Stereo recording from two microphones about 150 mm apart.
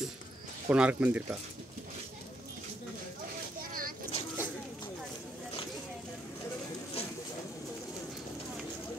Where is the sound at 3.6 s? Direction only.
70° right (ahead or behind).